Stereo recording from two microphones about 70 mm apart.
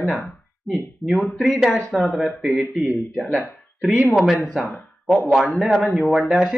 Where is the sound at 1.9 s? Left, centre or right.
Centre.